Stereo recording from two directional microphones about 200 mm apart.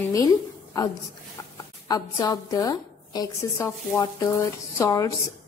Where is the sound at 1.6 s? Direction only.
20° left (ahead or behind).